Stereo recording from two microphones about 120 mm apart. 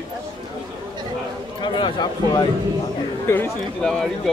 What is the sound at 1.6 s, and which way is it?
Speech, 40° left (ahead or behind).